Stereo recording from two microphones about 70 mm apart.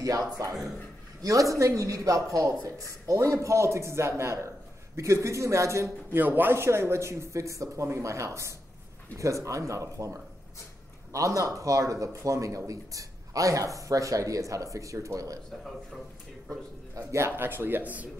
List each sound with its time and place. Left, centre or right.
0.0 s speech: right
6.1 s speech: right
11.1 s speech: right
16.9 s speech: right